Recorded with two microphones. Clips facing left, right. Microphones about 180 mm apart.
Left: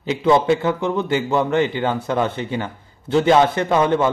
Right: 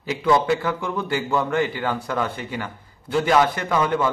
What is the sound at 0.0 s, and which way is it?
A man's voice, 25° left (ahead or behind).